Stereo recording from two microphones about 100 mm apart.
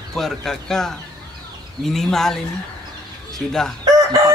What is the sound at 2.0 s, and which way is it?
Speech, 5° left (ahead or behind).